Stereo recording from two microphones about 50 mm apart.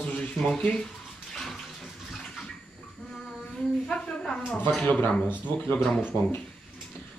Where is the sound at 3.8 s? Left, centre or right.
Left.